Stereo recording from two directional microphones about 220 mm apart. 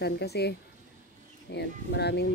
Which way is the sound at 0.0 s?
50° left (ahead or behind).